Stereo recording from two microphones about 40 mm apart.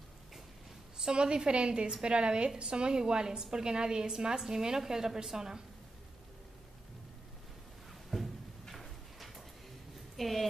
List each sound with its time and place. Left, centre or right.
0.9 s a woman's voice: centre
8.1 s a sound: centre
10.1 s speech: centre